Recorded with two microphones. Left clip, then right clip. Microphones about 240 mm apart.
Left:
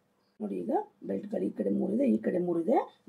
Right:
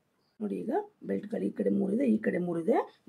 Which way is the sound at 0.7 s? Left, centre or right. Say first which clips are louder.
Left 1 dB; right.